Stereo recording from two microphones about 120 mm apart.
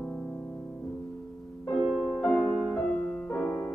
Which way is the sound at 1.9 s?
Centre (ahead or behind).